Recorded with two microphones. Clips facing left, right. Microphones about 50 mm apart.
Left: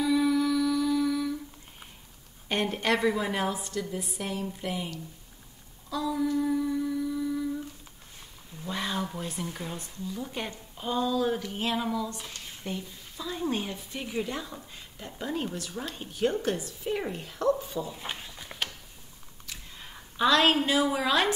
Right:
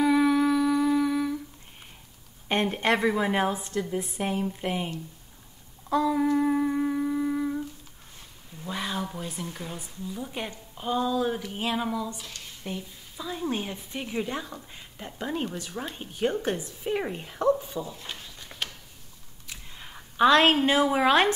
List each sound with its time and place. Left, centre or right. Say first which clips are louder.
0.0 s humming: right 3 dB; right
2.4 s a woman's voice: right 3 dB; right
5.9 s humming: right 5 dB; right
8.6 s a woman's voice: even; centre
17.6 s a woman's voice: even; centre
17.9 s a sound: left 2 dB; centre
19.7 s a sound: right 1 dB; centre
20.2 s a woman's voice: right 4 dB; right